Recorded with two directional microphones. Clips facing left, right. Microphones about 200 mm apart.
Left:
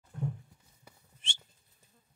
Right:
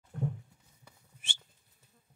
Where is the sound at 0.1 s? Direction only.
55° right (ahead or behind).